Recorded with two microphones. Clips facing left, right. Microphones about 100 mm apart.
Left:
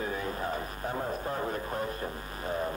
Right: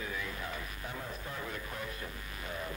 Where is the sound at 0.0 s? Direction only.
40° left (ahead or behind).